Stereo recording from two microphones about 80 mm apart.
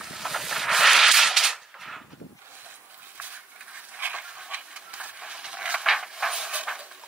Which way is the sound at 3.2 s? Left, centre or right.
Centre.